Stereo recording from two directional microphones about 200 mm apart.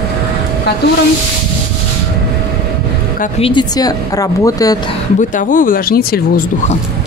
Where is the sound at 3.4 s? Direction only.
25° left (ahead or behind).